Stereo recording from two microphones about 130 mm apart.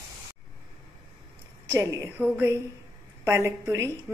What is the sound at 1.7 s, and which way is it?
Speech, 20° right (ahead or behind).